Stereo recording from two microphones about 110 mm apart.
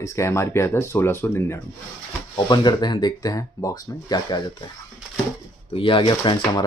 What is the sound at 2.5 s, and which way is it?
Speech, 40° left (ahead or behind).